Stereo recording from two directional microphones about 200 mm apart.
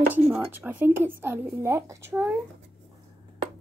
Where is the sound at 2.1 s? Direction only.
5° right (ahead or behind).